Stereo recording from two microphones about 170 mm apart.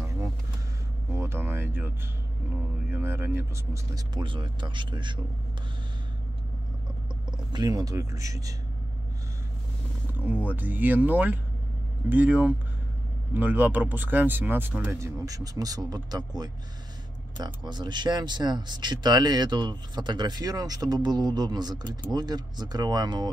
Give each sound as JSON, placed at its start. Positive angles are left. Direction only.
{"t": 1.1, "sound": "a sound", "side_deg": -15}
{"t": 2.9, "sound": "speech", "side_deg": -15}
{"t": 7.5, "sound": "speech", "side_deg": -25}
{"t": 10.1, "sound": "speech", "side_deg": -10}